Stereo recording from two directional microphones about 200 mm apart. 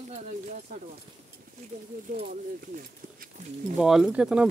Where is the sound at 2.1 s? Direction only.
45° right (ahead or behind).